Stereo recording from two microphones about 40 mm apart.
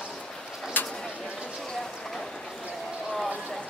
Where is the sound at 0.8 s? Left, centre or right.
Left.